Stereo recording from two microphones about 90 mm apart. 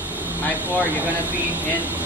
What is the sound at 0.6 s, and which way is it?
Speech, 20° right (ahead or behind).